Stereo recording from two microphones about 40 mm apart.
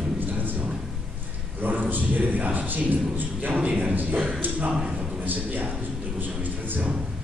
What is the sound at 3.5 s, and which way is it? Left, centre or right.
Speech, right.